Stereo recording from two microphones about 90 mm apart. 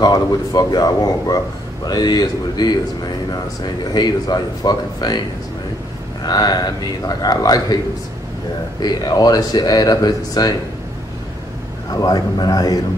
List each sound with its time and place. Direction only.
0.0 s speech: 45° left (ahead or behind)
6.2 s speech: 45° left (ahead or behind)
11.9 s speech: 50° left (ahead or behind)